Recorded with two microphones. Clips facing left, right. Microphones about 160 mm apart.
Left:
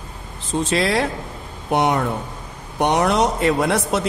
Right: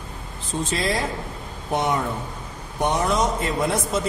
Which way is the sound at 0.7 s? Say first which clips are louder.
Left 5 dB; 70° left (ahead or behind).